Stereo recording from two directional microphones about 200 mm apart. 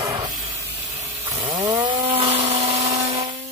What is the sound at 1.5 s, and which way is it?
Chainsaw, 20° right (ahead or behind).